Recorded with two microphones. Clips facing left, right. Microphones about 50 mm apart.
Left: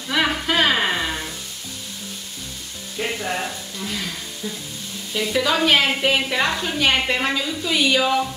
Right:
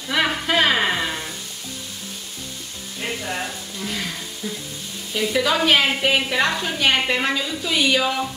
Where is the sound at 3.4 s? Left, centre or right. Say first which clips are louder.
Left 1 dB; centre.